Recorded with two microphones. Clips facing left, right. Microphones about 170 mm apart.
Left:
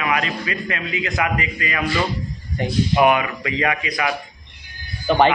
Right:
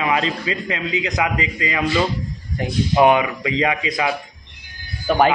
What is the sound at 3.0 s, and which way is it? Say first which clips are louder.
A man's voice: right 4 dB; 20° right (ahead or behind).